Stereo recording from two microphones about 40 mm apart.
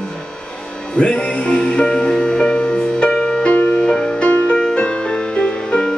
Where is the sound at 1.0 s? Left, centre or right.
Left.